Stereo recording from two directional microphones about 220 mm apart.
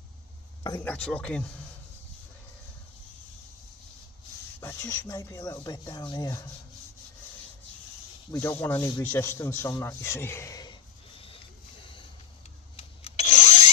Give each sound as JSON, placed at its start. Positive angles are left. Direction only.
{"t": 0.7, "sound": "speech", "side_deg": 10}
{"t": 4.6, "sound": "speech", "side_deg": 10}
{"t": 8.3, "sound": "speech", "side_deg": 10}
{"t": 12.7, "sound": "tools", "side_deg": 30}